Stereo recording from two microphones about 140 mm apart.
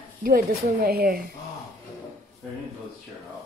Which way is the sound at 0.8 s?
90° right.